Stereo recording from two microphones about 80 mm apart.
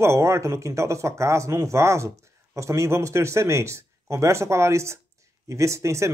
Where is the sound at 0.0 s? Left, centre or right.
Right.